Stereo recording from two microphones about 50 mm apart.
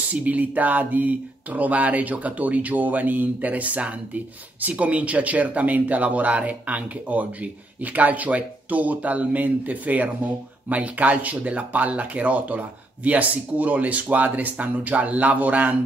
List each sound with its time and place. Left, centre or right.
0.1 s speech: right